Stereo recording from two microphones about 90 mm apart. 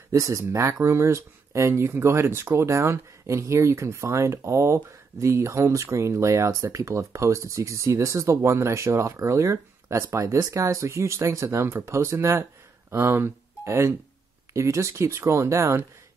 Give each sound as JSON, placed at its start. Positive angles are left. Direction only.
{"t": 0.1, "sound": "speech", "side_deg": -35}